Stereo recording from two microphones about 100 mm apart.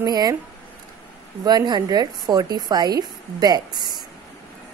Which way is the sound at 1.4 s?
40° right (ahead or behind).